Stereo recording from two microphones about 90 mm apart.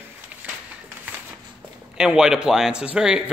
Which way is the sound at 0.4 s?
15° right (ahead or behind).